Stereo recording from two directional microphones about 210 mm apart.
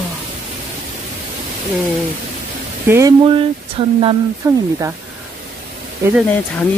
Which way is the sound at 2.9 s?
15° right (ahead or behind).